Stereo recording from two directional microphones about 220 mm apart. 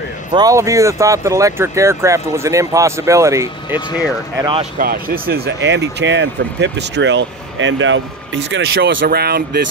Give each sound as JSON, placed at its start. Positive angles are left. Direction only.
{"t": 0.3, "sound": "speech", "side_deg": -15}
{"t": 4.7, "sound": "speech", "side_deg": -40}